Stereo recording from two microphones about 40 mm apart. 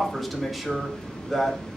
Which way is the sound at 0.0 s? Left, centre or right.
Centre.